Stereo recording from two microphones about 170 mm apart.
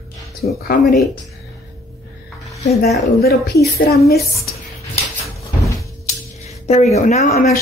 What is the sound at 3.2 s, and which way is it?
Speech, 70° left (ahead or behind).